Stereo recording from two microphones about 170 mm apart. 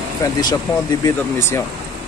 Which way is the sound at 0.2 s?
25° left (ahead or behind).